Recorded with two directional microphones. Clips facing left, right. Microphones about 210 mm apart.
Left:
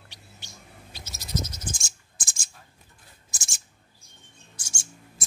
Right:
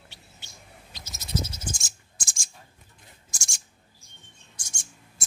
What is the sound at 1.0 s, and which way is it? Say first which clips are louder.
Frog: right 1 dB; 20° right (ahead or behind).